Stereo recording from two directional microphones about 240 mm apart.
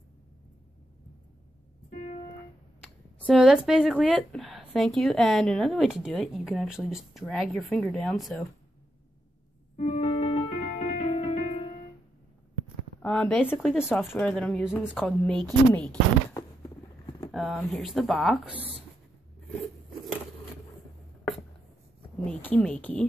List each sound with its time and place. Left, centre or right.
3.2 s a woman's voice: centre
9.8 s music: left
13.0 s a woman's voice: centre
17.3 s a sound: centre
17.6 s a woman's voice: centre
22.2 s speech: centre